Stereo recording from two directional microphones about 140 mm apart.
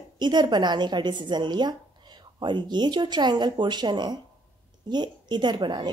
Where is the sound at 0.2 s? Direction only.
30° right (ahead or behind).